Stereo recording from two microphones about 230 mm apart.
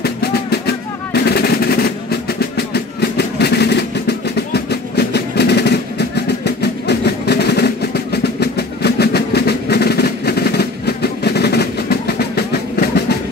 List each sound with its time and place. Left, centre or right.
0.0 s drum: left